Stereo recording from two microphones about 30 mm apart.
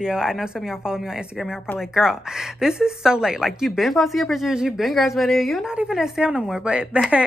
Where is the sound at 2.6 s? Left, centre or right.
Right.